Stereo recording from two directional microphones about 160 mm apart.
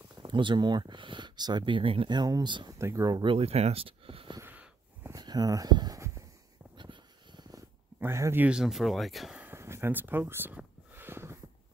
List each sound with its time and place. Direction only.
0.2 s speech: 30° right (ahead or behind)
4.4 s wheeze: 15° right (ahead or behind)
5.1 s a sound: 25° right (ahead or behind)
6.8 s dog: 30° right (ahead or behind)
8.0 s speech: 15° right (ahead or behind)